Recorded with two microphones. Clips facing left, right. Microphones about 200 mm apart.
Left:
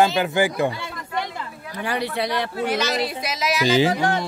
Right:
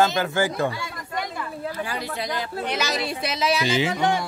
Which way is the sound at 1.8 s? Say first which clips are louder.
Left 10 dB; 65° left (ahead or behind).